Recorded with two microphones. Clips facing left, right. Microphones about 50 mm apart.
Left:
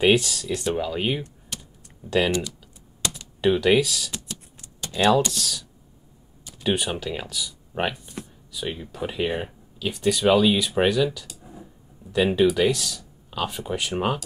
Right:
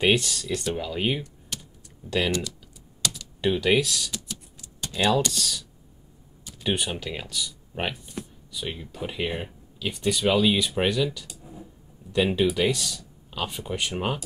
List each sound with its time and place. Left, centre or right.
0.0 s speech: centre
1.5 s typing: centre
3.0 s typing: left
3.3 s speech: centre
4.7 s a sound: centre
5.3 s speech: centre